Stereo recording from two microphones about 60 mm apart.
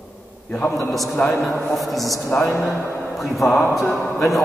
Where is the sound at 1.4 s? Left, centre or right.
Centre.